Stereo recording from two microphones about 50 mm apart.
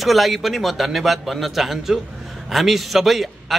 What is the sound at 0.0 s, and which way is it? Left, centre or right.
A man's voice, centre.